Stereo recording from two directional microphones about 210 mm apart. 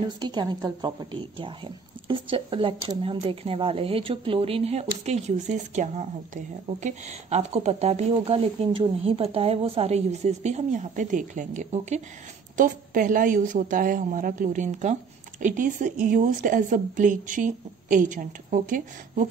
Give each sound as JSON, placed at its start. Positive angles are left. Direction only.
{"t": 0.0, "sound": "a woman's voice", "side_deg": -20}